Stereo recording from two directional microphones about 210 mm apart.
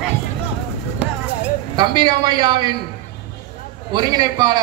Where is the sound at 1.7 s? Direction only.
20° right (ahead or behind).